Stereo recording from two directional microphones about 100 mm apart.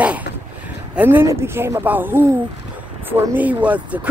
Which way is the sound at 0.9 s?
20° right (ahead or behind).